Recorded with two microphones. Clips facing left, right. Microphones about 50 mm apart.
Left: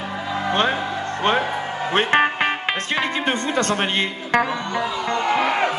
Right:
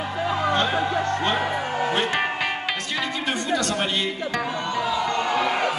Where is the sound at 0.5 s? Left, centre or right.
Left.